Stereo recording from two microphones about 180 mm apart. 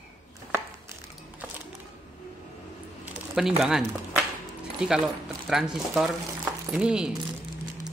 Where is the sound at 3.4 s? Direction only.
Centre (ahead or behind).